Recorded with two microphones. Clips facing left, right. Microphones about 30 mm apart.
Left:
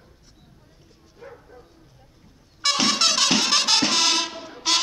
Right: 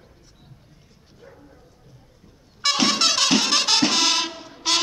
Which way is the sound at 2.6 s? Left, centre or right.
Centre.